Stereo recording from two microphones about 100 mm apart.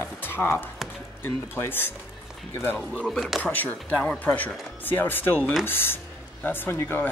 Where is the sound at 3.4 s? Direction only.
15° left (ahead or behind).